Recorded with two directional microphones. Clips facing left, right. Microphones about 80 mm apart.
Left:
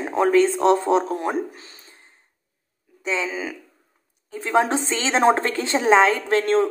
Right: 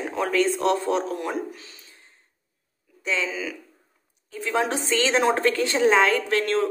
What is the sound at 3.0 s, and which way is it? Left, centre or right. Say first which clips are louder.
A woman's voice: left 2 dB; left.